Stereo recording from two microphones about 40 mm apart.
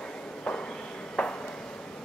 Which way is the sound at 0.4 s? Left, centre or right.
Left.